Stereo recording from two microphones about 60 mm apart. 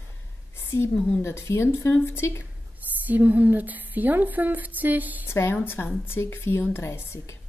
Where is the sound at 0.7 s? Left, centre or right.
Left.